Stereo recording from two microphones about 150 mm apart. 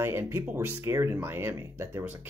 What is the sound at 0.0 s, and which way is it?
Speech, 15° right (ahead or behind).